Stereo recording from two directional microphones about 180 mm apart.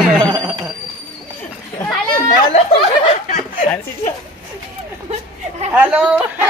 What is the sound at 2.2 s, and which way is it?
Chatter, 45° left (ahead or behind).